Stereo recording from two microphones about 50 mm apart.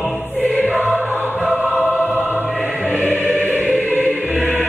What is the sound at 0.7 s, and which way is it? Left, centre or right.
Music, right.